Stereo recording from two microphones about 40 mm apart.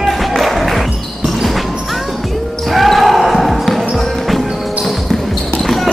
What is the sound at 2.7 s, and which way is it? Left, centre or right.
Basketball bounce, centre.